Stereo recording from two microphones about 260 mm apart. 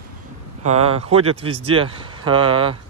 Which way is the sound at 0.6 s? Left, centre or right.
Right.